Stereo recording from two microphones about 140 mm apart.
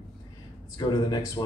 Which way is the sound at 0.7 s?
30° left (ahead or behind).